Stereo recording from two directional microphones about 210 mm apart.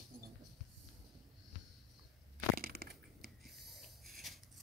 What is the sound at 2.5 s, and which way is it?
Crushing, 45° right (ahead or behind).